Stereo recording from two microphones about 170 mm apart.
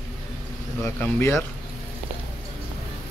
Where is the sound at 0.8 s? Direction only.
10° left (ahead or behind).